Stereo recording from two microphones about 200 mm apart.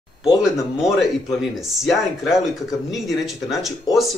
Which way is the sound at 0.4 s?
Centre (ahead or behind).